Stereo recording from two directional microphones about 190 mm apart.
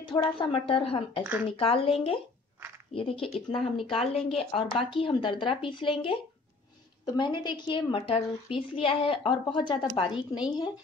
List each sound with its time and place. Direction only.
0.1 s speech: 25° left (ahead or behind)
3.3 s speech: centre (ahead or behind)
3.9 s speech: 30° left (ahead or behind)